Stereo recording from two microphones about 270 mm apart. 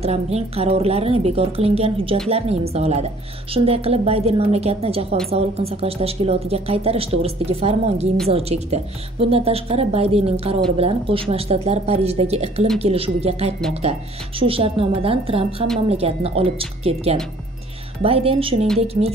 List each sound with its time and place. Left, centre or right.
0.0 s a woman's voice: right